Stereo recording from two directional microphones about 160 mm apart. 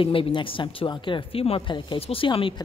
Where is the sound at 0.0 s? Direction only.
35° left (ahead or behind).